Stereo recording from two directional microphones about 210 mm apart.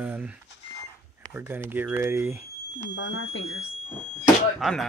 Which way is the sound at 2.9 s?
60° left (ahead or behind).